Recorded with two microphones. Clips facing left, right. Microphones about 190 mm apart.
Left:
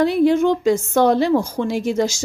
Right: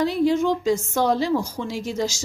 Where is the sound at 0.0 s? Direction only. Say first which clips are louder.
Left 5 dB; 60° left (ahead or behind).